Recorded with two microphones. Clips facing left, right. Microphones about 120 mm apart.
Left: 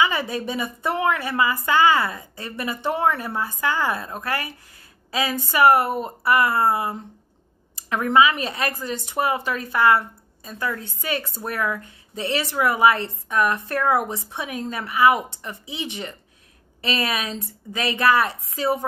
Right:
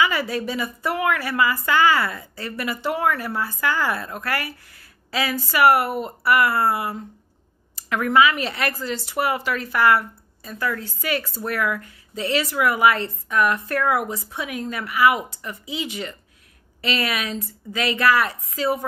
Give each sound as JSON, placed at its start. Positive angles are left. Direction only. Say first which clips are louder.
{"t": 0.0, "sound": "speech", "louder": "even", "side_deg": 25}